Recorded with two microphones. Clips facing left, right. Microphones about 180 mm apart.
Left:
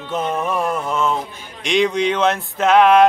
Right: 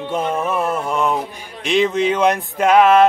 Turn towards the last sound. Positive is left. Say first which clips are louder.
# even
turn(degrees=-5)  # may be behind; listen again after turning